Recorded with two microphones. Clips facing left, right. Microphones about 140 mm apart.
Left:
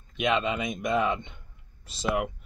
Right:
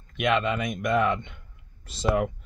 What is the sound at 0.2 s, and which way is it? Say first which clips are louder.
Speech: right 2 dB; 20° left (ahead or behind).